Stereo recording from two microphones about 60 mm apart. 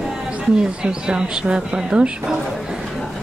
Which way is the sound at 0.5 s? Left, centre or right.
Centre.